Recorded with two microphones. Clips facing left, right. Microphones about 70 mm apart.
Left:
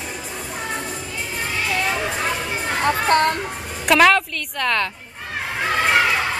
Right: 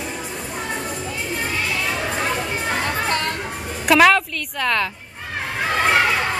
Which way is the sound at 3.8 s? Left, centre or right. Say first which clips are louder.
Right 1 dB; centre.